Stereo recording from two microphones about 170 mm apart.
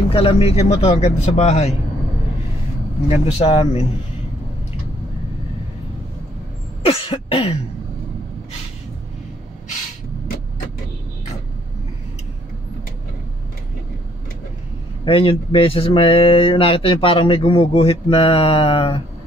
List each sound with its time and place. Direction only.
0.1 s speech: 35° left (ahead or behind)
3.1 s speech: 35° left (ahead or behind)
6.8 s cough: 35° left (ahead or behind)
15.0 s speech: 35° left (ahead or behind)